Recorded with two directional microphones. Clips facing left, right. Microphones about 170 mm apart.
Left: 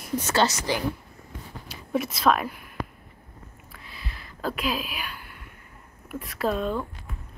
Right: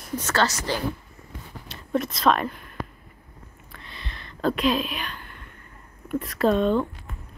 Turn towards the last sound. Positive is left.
turn(degrees=5)  # may be behind; listen again after turning